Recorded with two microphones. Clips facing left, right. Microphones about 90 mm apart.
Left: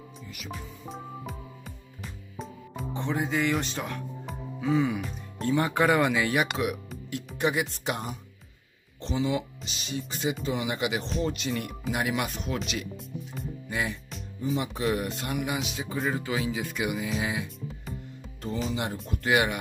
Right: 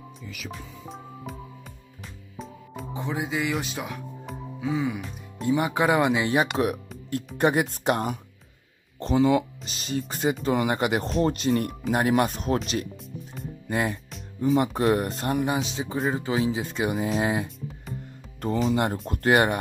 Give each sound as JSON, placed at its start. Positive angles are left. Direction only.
{"t": 0.5, "sound": "music", "side_deg": 0}
{"t": 2.3, "sound": "music", "side_deg": 0}
{"t": 5.4, "sound": "speech", "side_deg": -15}
{"t": 12.9, "sound": "music", "side_deg": 0}
{"t": 13.7, "sound": "speech", "side_deg": -45}
{"t": 18.7, "sound": "speech", "side_deg": -45}